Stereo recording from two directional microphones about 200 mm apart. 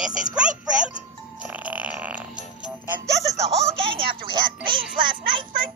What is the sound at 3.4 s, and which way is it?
Speech, 30° right (ahead or behind).